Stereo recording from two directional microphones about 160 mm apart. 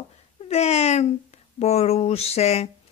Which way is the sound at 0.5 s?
45° left (ahead or behind).